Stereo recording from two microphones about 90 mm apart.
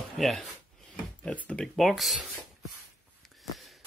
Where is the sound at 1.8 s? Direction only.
Centre (ahead or behind).